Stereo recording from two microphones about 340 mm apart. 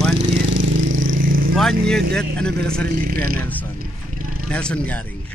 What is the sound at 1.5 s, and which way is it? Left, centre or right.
Speech, centre.